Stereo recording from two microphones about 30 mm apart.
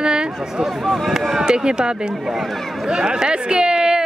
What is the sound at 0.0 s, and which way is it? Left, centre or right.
Chatter, right.